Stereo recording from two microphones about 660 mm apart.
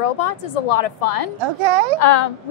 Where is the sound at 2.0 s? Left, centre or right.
Left.